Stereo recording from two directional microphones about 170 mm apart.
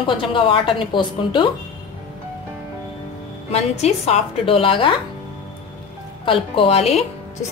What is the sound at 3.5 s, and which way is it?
Speech, 40° left (ahead or behind).